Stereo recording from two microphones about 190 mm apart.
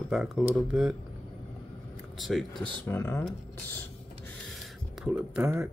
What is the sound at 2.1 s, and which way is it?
Speech, centre (ahead or behind).